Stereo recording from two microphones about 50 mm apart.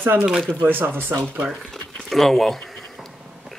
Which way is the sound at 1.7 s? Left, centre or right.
Centre.